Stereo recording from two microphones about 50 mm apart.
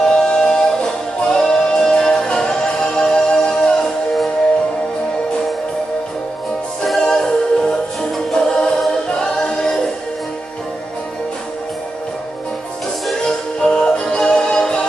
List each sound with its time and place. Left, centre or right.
0.0 s music: centre
6.8 s music: centre
13.2 s music: centre